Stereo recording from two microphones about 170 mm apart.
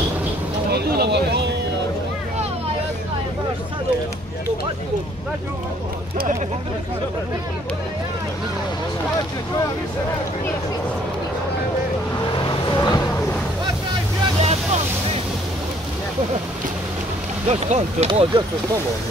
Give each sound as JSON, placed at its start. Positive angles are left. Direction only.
{"t": 0.7, "sound": "a sound", "side_deg": -70}
{"t": 12.3, "sound": "vehicle", "side_deg": 25}
{"t": 14.4, "sound": "vehicle", "side_deg": -40}
{"t": 17.5, "sound": "speech", "side_deg": -40}